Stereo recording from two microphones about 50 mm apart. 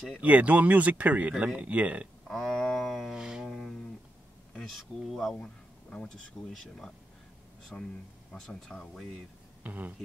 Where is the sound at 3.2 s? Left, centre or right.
Centre.